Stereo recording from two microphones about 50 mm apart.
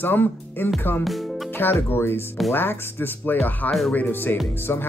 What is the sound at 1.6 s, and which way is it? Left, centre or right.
Speech, left.